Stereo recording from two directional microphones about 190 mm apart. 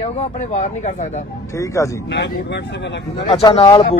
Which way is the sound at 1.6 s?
15° left (ahead or behind).